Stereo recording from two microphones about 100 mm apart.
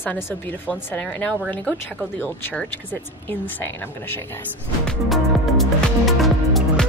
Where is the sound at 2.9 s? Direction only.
20° left (ahead or behind).